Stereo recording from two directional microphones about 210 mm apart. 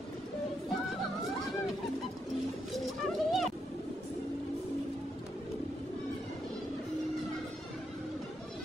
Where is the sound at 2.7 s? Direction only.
Centre (ahead or behind).